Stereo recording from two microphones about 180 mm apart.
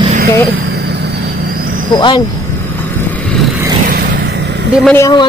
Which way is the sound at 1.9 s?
25° left (ahead or behind).